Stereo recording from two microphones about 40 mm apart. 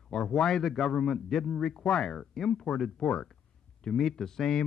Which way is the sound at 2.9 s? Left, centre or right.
Centre.